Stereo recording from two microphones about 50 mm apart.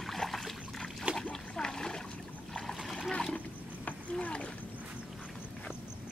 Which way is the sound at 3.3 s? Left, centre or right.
Left.